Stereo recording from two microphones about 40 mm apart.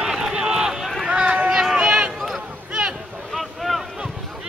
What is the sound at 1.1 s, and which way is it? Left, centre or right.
Run, right.